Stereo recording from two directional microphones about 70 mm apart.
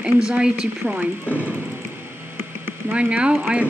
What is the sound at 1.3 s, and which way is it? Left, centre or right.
Speech, left.